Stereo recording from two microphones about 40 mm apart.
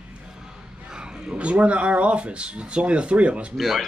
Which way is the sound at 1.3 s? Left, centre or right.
Right.